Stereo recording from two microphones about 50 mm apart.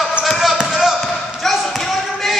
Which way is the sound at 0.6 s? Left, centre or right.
Centre.